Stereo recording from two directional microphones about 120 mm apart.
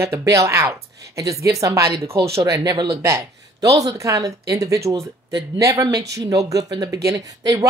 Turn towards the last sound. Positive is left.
turn(degrees=-30)  # may be behind; listen again after turning